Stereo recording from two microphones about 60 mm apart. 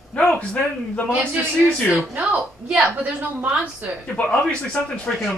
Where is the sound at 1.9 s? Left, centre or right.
Centre.